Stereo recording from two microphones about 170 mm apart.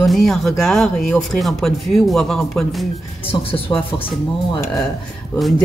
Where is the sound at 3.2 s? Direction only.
30° left (ahead or behind).